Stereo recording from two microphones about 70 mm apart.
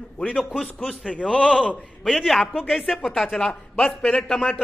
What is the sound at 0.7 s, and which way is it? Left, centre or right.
Speech, centre.